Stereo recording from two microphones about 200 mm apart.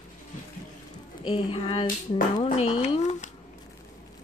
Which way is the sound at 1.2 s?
25° left (ahead or behind).